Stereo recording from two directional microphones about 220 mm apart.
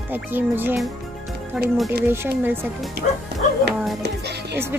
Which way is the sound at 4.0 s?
50° right (ahead or behind).